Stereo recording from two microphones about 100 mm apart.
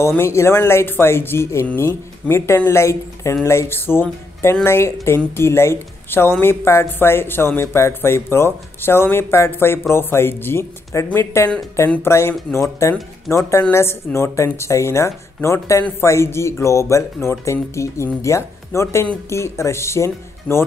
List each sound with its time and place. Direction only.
0.2 s speech: 25° left (ahead or behind)